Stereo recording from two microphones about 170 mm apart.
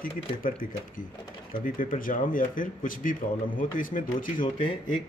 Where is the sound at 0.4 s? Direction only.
55° left (ahead or behind).